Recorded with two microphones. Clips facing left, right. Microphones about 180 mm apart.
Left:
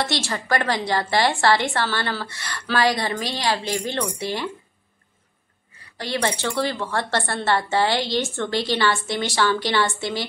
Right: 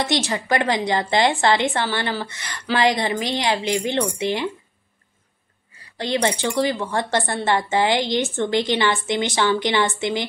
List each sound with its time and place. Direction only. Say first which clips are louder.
0.0 s a woman's voice: right 3 dB; 15° right (ahead or behind)
5.9 s a woman's voice: right 3 dB; 20° right (ahead or behind)